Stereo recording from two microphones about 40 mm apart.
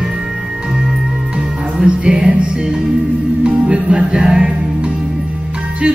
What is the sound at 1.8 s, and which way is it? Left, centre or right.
Music, right.